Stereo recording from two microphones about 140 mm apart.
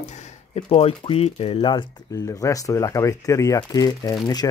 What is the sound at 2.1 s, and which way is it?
Speech, 25° left (ahead or behind).